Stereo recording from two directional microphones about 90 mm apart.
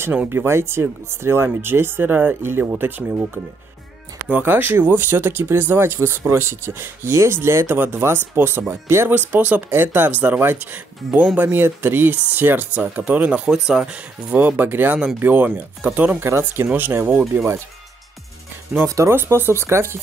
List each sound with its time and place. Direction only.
0.3 s speech: 30° right (ahead or behind)
4.3 s speech: 20° right (ahead or behind)
14.3 s speech: 20° right (ahead or behind)
16.3 s speech: 30° right (ahead or behind)
18.9 s speech: 35° right (ahead or behind)
19.1 s speech: 25° right (ahead or behind)